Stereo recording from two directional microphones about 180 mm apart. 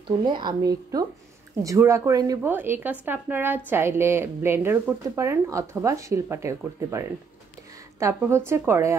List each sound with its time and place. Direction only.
0.2 s speech: 25° right (ahead or behind)